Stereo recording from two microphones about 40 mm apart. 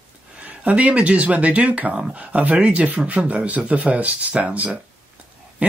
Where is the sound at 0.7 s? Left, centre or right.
Right.